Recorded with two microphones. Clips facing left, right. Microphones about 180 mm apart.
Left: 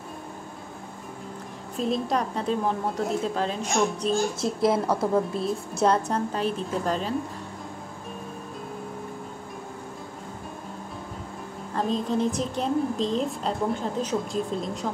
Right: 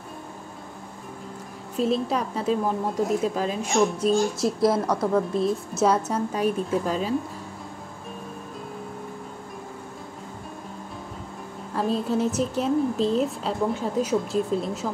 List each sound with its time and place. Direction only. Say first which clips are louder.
1.8 s a woman's voice: right 2 dB; 5° right (ahead or behind)
4.4 s a woman's voice: right 2 dB; 25° left (ahead or behind)
5.0 s a woman's voice: right 2 dB; centre (ahead or behind)
11.7 s a woman's voice: right 1 dB; 5° right (ahead or behind)